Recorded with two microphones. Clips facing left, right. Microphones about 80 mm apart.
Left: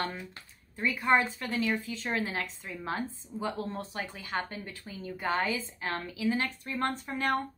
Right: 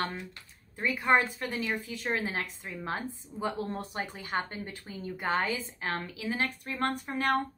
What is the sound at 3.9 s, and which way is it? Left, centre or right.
A woman's voice, right.